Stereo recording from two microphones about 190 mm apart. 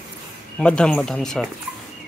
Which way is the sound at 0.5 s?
5° left (ahead or behind).